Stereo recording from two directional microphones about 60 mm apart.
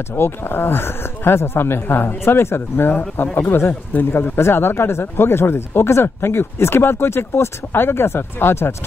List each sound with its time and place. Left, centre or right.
0.1 s speech: left